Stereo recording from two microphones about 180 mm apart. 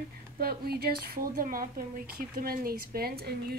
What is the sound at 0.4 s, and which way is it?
A woman's voice, 55° right (ahead or behind).